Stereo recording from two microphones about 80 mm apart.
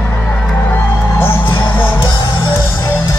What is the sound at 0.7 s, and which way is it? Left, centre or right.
Music, left.